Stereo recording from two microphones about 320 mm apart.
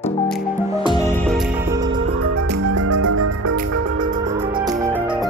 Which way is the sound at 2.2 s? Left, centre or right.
Right.